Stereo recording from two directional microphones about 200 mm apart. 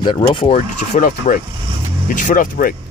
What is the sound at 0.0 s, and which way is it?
Speech, 25° left (ahead or behind).